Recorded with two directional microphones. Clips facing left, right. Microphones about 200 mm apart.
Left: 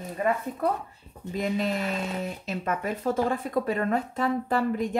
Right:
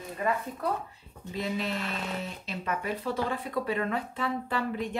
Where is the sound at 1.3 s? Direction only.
45° left (ahead or behind).